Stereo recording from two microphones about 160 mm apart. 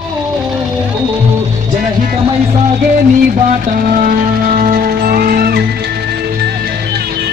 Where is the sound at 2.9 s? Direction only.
55° right (ahead or behind).